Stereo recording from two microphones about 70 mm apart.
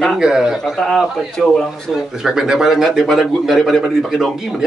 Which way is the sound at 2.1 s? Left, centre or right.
Centre.